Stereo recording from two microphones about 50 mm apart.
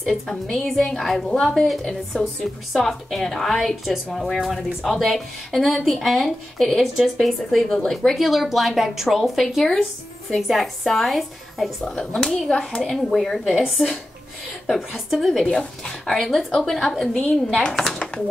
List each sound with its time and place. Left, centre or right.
0.0 s a woman's voice: centre
8.2 s a woman's voice: centre
12.0 s a woman's voice: centre
13.6 s a woman's voice: centre
17.0 s a woman's voice: left
17.6 s speech: centre